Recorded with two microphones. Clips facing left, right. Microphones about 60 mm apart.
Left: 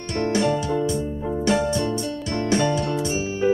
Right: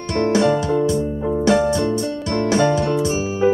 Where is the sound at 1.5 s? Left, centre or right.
Right.